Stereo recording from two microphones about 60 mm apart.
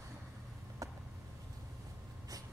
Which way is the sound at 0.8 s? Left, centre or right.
Right.